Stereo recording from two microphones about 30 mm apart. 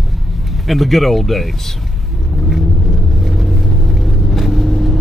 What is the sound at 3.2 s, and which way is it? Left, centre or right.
Vehicle, centre.